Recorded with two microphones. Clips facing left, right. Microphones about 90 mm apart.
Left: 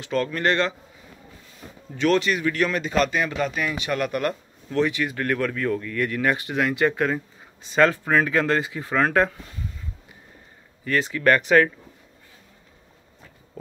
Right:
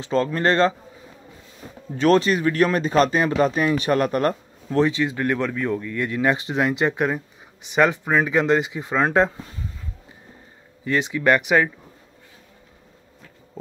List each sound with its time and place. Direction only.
0.0 s speech: 30° right (ahead or behind)
2.0 s speech: 35° right (ahead or behind)
10.8 s speech: 20° right (ahead or behind)